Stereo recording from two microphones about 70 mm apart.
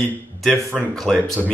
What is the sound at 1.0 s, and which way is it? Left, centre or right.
Speech, centre.